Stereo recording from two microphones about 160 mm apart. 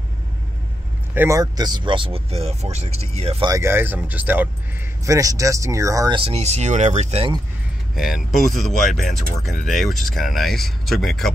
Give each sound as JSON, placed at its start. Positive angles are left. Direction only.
{"t": 1.1, "sound": "speech", "side_deg": -15}
{"t": 3.4, "sound": "speech", "side_deg": -20}
{"t": 5.0, "sound": "speech", "side_deg": -20}
{"t": 7.9, "sound": "speech", "side_deg": 0}